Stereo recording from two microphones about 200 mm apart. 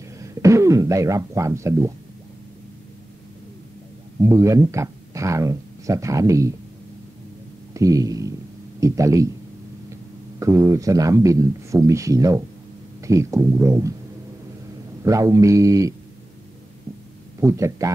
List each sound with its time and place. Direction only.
0.2 s speech: 15° right (ahead or behind)
4.2 s speech: 15° right (ahead or behind)
7.7 s a sound: 15° right (ahead or behind)
10.4 s speech: 15° right (ahead or behind)
15.0 s speech: 15° right (ahead or behind)
17.4 s speech: 15° right (ahead or behind)